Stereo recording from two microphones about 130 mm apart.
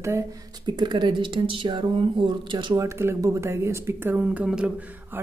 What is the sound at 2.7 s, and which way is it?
Speech, 20° right (ahead or behind).